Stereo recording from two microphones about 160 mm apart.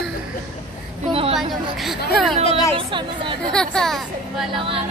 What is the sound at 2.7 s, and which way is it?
Speech, 30° right (ahead or behind).